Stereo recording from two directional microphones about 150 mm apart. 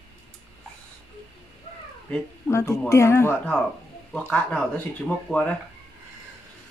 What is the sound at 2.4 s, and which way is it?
A woman's voice, 20° left (ahead or behind).